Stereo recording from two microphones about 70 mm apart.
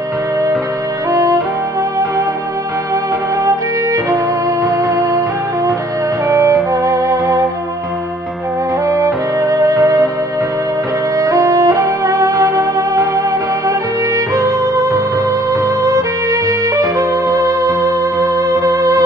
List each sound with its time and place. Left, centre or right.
1.1 s music: right
3.4 s music: right
4.6 s music: centre
6.2 s music: right
8.8 s music: right
11.1 s music: right